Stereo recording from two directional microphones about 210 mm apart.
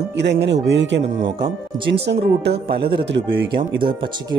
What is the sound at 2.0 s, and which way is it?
Speech, 55° right (ahead or behind).